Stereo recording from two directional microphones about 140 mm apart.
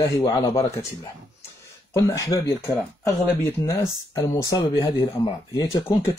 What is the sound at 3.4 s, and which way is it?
Speech, 25° left (ahead or behind).